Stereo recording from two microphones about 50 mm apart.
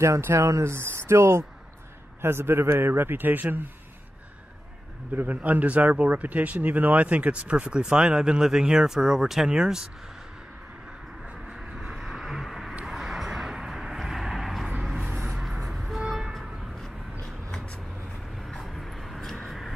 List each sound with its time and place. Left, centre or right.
0.4 s a man's voice: right
5.1 s speech: right; by 9.8 s centre
11.7 s vehicle: centre
15.7 s music: centre
17.2 s vehicle: centre
18.6 s vehicle: centre